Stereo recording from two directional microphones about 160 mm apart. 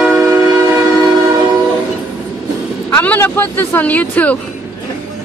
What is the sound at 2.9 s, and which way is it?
Speech, 15° left (ahead or behind).